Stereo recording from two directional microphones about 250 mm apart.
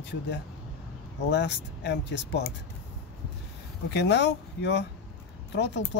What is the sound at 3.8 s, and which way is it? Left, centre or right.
Speech, left.